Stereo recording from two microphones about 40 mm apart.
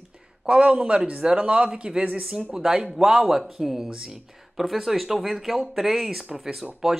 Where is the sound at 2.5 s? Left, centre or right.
Centre.